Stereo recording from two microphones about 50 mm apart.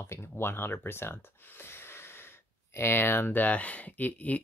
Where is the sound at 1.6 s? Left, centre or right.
Left.